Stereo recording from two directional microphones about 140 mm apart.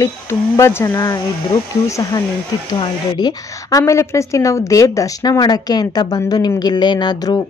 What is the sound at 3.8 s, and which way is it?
Speech, 20° left (ahead or behind).